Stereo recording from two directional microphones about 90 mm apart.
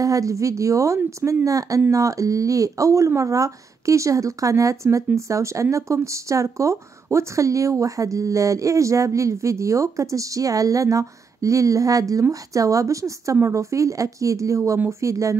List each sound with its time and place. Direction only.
0.0 s speech: 40° right (ahead or behind)